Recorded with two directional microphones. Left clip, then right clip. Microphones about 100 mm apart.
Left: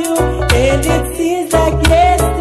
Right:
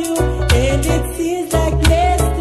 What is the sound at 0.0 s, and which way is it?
Music, 20° right (ahead or behind).